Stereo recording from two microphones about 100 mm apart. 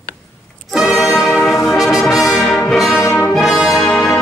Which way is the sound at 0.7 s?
Centre (ahead or behind).